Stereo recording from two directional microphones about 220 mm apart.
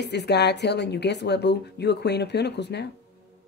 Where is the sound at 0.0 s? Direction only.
50° left (ahead or behind).